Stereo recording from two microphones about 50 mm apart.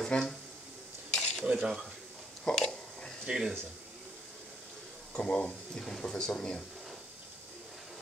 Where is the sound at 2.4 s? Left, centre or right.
Centre.